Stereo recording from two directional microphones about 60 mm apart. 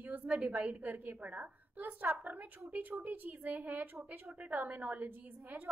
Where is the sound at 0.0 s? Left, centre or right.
Right.